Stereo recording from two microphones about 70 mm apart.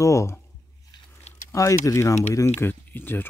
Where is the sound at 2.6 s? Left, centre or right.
Left.